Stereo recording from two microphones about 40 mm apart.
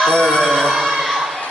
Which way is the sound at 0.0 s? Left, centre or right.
Centre.